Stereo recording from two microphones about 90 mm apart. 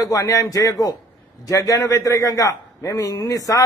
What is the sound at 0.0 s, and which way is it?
A man's voice, 40° left (ahead or behind).